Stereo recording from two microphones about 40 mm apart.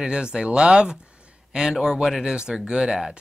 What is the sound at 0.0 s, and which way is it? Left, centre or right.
Speech, right.